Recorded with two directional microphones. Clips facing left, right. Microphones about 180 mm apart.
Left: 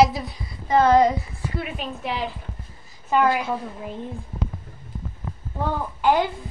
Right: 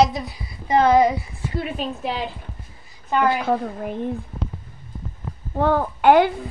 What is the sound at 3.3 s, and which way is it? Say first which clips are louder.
Speech: right 3 dB; 55° right (ahead or behind).